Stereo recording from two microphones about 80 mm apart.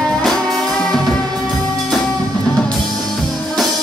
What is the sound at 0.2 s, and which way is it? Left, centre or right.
Music, centre.